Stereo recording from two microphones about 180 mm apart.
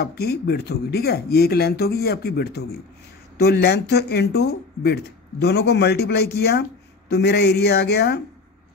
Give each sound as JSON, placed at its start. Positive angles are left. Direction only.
{"t": 0.0, "sound": "a man's voice", "side_deg": 60}